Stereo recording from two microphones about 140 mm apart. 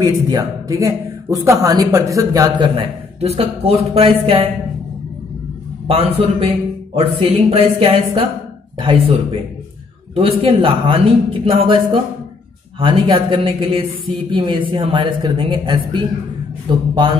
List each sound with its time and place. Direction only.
0.0 s speech: 25° right (ahead or behind)
3.2 s speech: 45° right (ahead or behind)
5.9 s speech: 45° right (ahead or behind)